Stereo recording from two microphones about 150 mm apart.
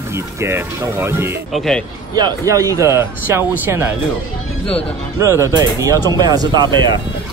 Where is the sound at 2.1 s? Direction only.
25° right (ahead or behind).